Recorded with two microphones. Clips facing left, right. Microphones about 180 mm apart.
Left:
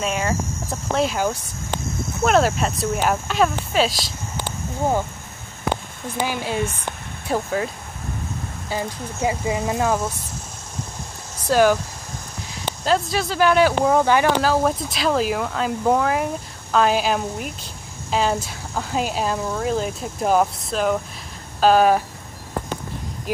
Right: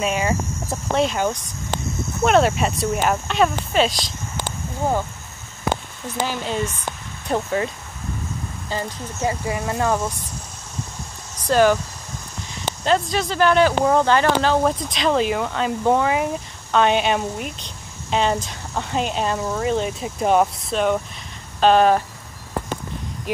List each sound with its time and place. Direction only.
0.0 s speech: centre (ahead or behind)
6.2 s speech: 10° left (ahead or behind)
11.4 s speech: 5° left (ahead or behind)
12.8 s speech: 5° left (ahead or behind)
21.5 s a sound: 5° left (ahead or behind)